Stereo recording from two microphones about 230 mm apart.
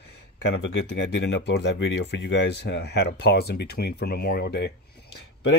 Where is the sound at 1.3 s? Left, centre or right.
Left.